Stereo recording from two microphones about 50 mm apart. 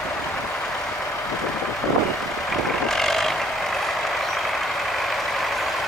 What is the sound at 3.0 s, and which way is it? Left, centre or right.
Vehicle, centre.